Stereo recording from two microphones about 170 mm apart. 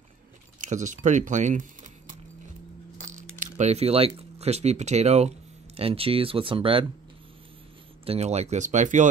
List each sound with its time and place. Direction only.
0.6 s speech: 45° right (ahead or behind)
3.5 s speech: 40° right (ahead or behind)
8.0 s speech: 35° right (ahead or behind)